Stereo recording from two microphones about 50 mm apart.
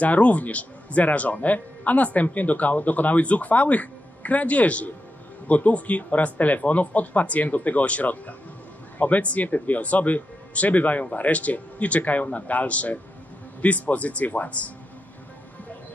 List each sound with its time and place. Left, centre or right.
0.0 s speech: left